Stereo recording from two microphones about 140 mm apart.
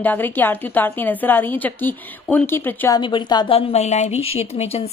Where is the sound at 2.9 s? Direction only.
35° left (ahead or behind).